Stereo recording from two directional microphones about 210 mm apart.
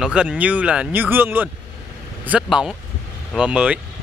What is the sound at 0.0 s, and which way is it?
Speech, 5° right (ahead or behind).